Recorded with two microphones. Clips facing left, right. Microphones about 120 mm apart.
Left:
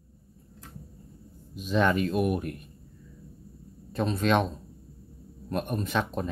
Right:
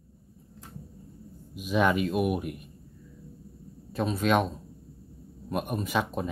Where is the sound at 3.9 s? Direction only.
5° right (ahead or behind).